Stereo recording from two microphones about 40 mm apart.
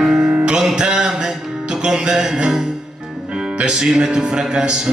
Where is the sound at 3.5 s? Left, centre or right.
Centre.